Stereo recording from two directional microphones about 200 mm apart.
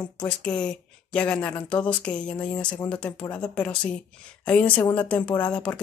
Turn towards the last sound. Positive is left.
turn(degrees=5)  # may be behind; listen again after turning